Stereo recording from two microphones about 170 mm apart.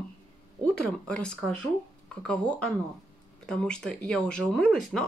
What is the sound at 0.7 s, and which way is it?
Speech, 5° left (ahead or behind).